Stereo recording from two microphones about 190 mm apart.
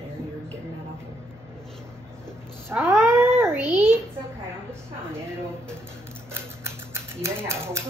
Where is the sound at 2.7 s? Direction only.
10° right (ahead or behind).